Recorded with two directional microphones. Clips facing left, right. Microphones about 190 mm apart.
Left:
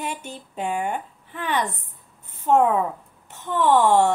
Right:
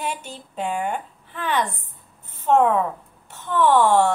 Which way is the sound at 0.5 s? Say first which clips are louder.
Right 1 dB; 10° left (ahead or behind).